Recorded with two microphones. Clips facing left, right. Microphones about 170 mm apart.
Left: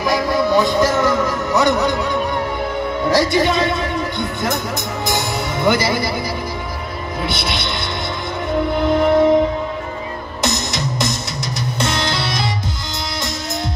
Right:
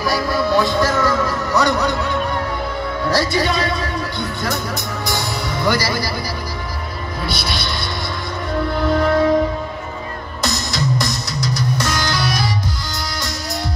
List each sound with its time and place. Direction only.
0.0 s music: 20° left (ahead or behind)
3.1 s speech: 20° left (ahead or behind)
7.2 s speech: 20° left (ahead or behind)
8.6 s music: 20° left (ahead or behind)
10.4 s music: 20° left (ahead or behind)